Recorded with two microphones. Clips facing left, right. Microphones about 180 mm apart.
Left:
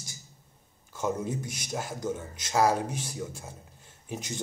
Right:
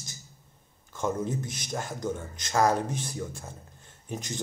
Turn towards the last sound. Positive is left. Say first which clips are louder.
# right 1 dB
turn(degrees=10)  # may be behind; listen again after turning